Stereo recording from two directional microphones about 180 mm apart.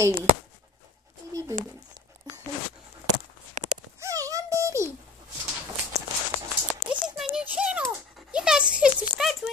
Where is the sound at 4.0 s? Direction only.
20° right (ahead or behind).